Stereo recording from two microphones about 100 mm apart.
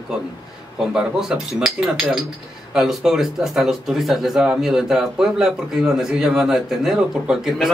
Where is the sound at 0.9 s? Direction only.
10° right (ahead or behind).